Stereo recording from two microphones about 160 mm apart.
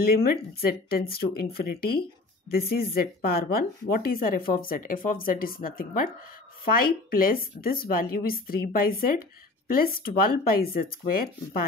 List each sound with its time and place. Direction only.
0.0 s speech: 70° left (ahead or behind)